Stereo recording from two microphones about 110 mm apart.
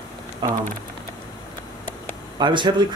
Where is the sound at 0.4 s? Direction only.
45° right (ahead or behind).